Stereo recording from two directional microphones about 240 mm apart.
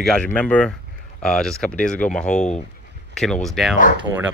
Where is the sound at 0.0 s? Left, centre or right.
Centre.